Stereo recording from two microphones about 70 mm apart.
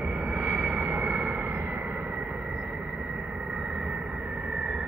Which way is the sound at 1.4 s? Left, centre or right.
Right.